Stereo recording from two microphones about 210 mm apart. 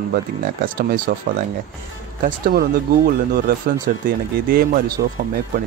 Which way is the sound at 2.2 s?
40° right (ahead or behind).